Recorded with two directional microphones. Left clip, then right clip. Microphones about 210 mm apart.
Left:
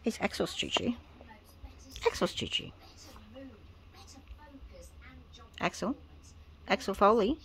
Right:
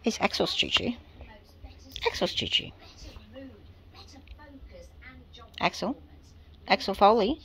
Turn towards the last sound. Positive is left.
turn(degrees=15)  # may be behind; listen again after turning